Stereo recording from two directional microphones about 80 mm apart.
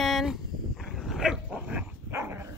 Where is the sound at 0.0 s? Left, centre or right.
Centre.